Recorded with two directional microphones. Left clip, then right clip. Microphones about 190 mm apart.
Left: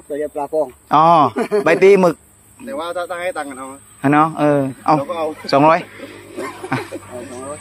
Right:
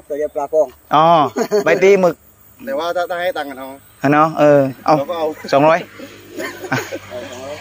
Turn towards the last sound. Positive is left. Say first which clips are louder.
# right 2 dB
turn(degrees=-10)  # may be behind; listen again after turning